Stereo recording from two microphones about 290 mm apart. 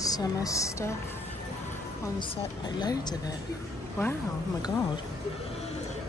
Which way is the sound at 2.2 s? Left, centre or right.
Centre.